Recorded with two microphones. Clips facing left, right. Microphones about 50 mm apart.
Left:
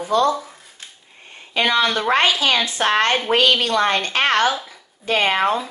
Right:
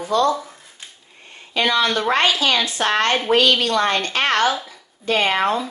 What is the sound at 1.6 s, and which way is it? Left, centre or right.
A woman's voice, left.